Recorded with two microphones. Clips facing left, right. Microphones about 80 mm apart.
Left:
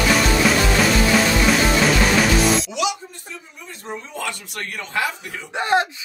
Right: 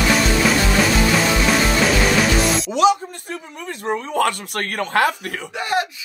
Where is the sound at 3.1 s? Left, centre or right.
Right.